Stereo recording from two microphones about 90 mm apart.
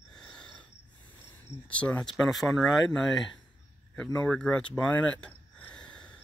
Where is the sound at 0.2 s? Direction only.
10° left (ahead or behind).